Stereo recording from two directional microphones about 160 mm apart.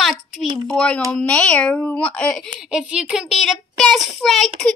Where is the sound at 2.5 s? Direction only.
5° right (ahead or behind).